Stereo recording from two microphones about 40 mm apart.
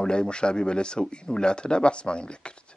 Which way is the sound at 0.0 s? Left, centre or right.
Left.